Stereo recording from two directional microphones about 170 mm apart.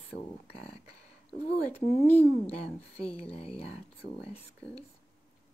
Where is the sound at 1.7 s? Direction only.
40° left (ahead or behind).